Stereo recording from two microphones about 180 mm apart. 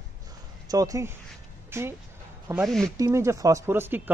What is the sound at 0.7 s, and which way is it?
Speech, 20° right (ahead or behind).